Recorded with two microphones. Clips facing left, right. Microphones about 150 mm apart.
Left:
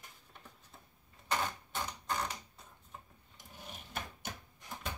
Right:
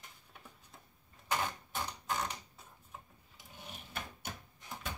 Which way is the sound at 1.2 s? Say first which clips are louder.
Even; 5° right (ahead or behind).